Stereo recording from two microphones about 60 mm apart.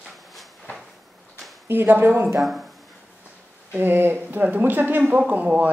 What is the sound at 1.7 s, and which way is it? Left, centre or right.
Speech, right.